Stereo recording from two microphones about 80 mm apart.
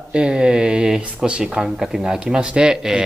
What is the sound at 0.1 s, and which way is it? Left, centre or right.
Speech, centre.